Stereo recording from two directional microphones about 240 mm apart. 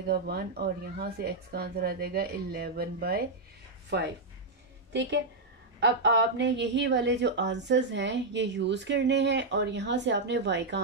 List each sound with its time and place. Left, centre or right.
0.3 s a woman's voice: right
5.8 s a woman's voice: right